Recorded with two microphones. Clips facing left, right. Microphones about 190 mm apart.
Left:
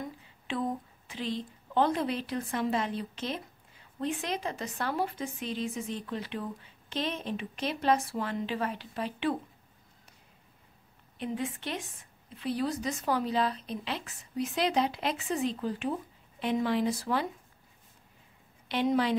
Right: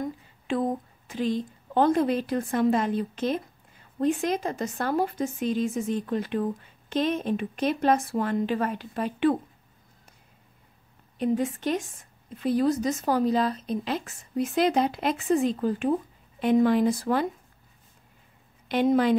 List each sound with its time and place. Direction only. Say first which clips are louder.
0.0 s a woman's voice: right 8 dB; 45° right (ahead or behind)
11.1 s speech: right 9 dB; 45° right (ahead or behind)
18.7 s speech: right 6 dB; 50° right (ahead or behind)